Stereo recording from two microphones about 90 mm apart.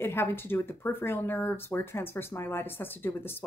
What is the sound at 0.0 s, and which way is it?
A woman's voice, 25° left (ahead or behind).